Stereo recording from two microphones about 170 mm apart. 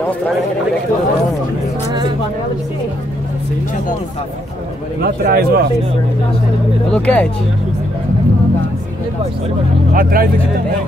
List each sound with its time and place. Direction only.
5.0 s a man's voice: 65° right (ahead or behind)
6.9 s speech: 10° left (ahead or behind)
9.9 s speech: 55° right (ahead or behind)